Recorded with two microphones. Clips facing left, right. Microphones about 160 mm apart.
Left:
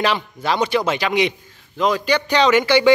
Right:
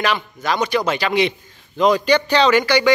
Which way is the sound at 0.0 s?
30° left (ahead or behind).